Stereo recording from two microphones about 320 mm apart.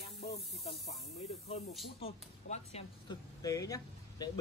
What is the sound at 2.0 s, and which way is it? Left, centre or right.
Speech, centre.